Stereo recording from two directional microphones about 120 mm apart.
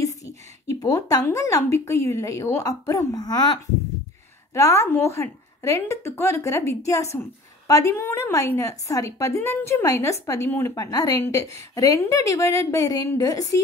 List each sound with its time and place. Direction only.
0.2 s a woman's voice: 30° left (ahead or behind)
4.6 s a woman's voice: 25° left (ahead or behind)